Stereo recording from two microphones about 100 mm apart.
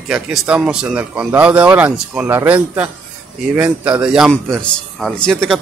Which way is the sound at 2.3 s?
20° right (ahead or behind).